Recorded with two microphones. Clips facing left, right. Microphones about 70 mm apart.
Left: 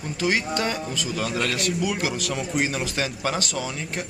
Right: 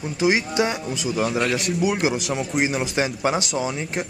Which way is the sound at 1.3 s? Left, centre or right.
Centre.